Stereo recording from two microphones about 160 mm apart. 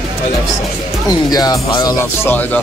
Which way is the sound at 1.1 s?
25° left (ahead or behind).